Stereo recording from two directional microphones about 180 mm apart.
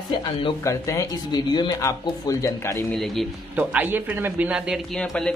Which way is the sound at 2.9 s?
Centre (ahead or behind).